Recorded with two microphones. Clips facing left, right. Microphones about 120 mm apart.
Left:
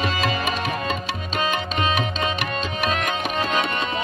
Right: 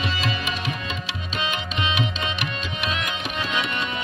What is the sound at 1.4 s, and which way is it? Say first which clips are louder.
Tabla: left 4 dB; 40° left (ahead or behind).